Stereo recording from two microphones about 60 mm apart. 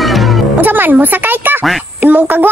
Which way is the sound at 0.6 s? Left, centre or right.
Right.